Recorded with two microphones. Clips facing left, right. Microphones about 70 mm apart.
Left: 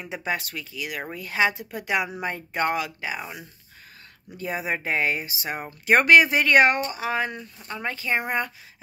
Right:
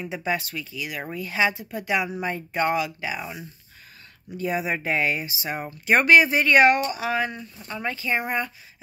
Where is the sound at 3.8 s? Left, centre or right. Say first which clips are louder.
Left 1 dB; left.